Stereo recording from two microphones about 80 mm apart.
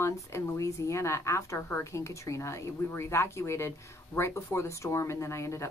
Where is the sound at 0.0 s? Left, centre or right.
Left.